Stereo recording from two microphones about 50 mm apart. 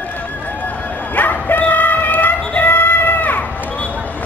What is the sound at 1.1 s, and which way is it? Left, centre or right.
Music, left.